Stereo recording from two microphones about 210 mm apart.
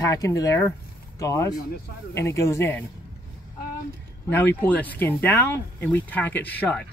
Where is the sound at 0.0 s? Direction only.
15° left (ahead or behind).